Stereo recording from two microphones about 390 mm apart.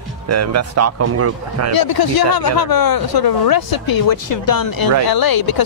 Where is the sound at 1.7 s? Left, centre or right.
Left.